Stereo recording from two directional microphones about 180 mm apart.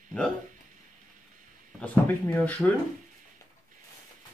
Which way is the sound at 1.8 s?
10° left (ahead or behind).